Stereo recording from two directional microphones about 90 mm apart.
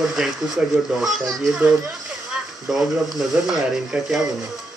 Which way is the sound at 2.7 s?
5° right (ahead or behind).